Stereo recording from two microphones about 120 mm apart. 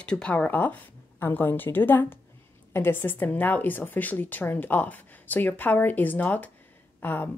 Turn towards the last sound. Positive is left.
turn(degrees=15)  # may be behind; listen again after turning